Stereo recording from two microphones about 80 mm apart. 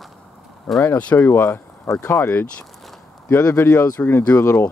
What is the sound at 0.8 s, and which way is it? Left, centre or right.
Speech, left.